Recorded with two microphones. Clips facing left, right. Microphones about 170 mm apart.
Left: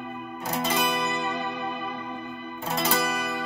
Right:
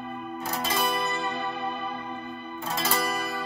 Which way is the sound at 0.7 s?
20° left (ahead or behind).